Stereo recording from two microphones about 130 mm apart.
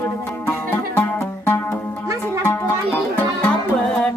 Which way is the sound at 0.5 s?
15° left (ahead or behind).